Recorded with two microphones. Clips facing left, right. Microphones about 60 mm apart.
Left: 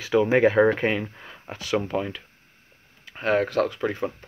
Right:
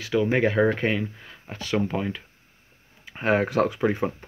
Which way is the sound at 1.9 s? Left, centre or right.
Centre.